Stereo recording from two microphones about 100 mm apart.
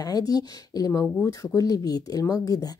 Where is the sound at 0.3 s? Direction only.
40° left (ahead or behind).